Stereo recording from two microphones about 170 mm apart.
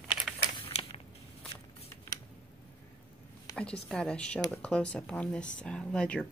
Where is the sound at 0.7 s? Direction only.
35° left (ahead or behind).